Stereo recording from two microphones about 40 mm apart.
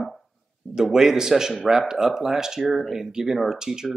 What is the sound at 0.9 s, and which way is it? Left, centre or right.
Speech, centre.